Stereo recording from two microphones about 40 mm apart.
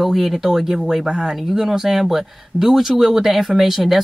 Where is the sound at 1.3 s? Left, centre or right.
Centre.